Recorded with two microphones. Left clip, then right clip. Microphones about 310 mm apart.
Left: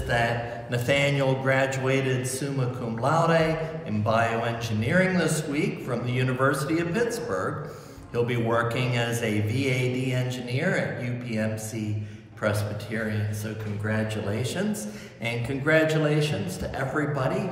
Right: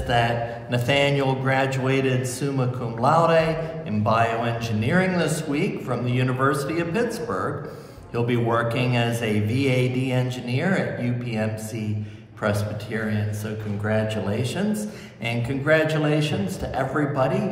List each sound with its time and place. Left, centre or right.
0.1 s a man's voice: centre